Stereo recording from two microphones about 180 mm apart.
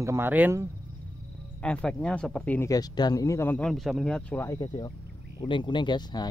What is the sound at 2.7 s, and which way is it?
Speech, 20° left (ahead or behind).